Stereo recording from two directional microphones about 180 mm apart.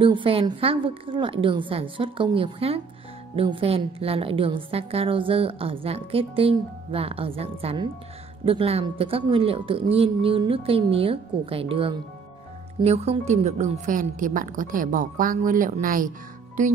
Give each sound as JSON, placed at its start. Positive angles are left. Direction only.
{"t": 0.0, "sound": "a woman's voice", "side_deg": -30}